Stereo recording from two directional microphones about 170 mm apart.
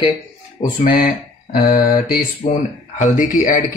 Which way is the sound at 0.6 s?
55° left (ahead or behind).